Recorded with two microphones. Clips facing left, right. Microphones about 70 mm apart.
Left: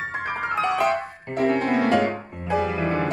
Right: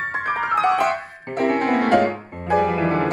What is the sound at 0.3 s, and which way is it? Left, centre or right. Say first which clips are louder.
Music: right 5 dB; right.